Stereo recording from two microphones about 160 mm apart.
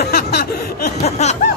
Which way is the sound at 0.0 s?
80° left.